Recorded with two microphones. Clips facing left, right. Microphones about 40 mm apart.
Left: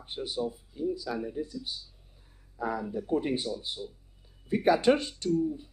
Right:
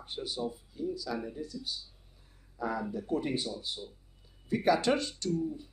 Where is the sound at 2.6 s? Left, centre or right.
Centre.